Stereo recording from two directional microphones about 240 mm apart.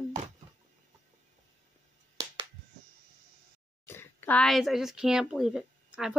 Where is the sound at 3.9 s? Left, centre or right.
Centre.